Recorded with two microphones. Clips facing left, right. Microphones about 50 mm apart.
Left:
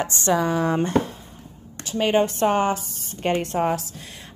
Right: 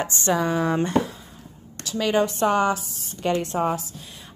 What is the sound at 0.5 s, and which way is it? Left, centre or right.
Speech, right.